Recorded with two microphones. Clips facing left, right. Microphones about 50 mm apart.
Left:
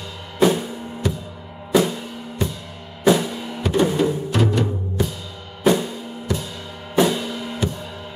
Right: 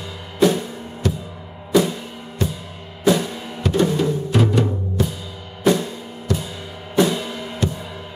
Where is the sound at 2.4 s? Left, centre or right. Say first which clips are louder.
Right 2 dB; centre.